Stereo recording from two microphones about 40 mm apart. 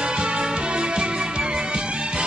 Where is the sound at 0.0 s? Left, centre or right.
Centre.